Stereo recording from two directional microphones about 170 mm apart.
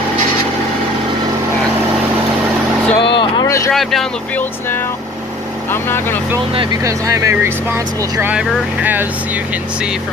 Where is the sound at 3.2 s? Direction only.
20° left (ahead or behind).